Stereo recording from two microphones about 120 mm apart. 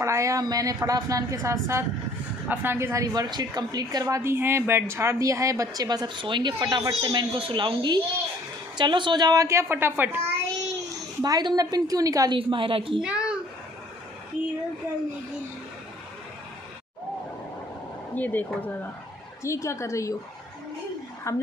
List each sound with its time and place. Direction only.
0.0 s a woman's voice: 25° right (ahead or behind)
4.2 s a woman's voice: 20° right (ahead or behind)
11.1 s a woman's voice: 30° right (ahead or behind)
12.4 s a woman's voice: 45° right (ahead or behind)
13.0 s a sound: 10° right (ahead or behind)
18.1 s speech: 15° left (ahead or behind)
21.3 s speech: 25° left (ahead or behind)